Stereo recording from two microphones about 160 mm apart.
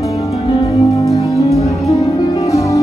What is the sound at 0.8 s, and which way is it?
Music, 20° left (ahead or behind).